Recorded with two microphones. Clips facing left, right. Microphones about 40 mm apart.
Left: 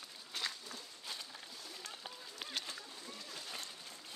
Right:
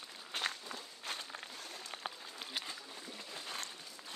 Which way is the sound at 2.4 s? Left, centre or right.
Centre.